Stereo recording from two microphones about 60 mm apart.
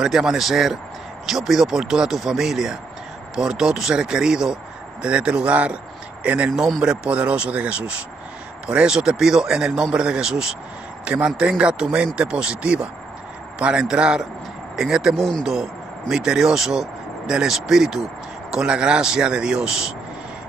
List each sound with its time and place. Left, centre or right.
0.0 s speech: centre